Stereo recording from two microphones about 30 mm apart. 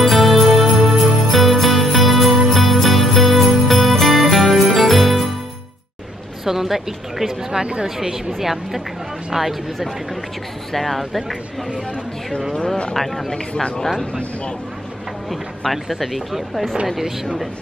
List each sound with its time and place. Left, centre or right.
0.0 s jingle bell: centre
6.4 s a woman's voice: centre
10.7 s speech: centre
12.5 s speech: left
12.9 s speech: centre
16.3 s speech: centre